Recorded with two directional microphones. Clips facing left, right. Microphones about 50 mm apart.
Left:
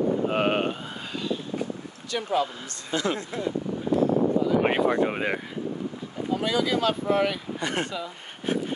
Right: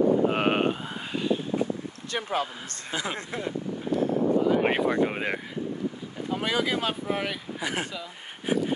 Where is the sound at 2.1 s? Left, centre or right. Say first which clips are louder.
Left 3 dB; right.